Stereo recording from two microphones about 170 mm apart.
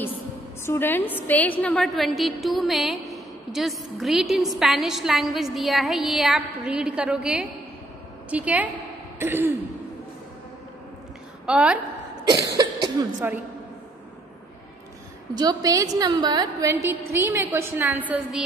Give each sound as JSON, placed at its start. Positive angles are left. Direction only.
{"t": 0.7, "sound": "a woman's voice", "side_deg": 15}
{"t": 11.4, "sound": "a woman's voice", "side_deg": -5}
{"t": 13.0, "sound": "a woman's voice", "side_deg": -20}
{"t": 15.3, "sound": "a woman's voice", "side_deg": -20}